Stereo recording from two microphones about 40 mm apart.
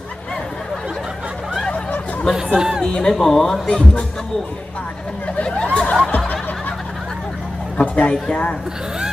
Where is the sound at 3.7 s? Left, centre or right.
Left.